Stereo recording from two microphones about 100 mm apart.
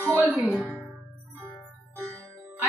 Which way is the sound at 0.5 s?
10° right (ahead or behind).